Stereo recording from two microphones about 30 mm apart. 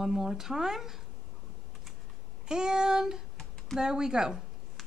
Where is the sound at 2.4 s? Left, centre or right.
Right.